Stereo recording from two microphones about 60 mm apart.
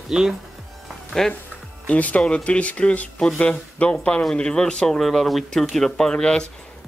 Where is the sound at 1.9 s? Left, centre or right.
Left.